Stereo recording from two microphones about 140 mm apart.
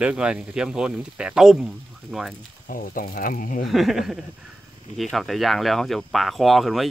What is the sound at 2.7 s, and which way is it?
Speech, 85° left.